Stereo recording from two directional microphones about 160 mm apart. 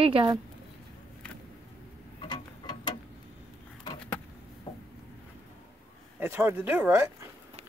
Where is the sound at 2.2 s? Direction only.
30° left (ahead or behind).